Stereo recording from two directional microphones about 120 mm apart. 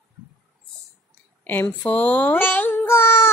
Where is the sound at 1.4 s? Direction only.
15° left (ahead or behind).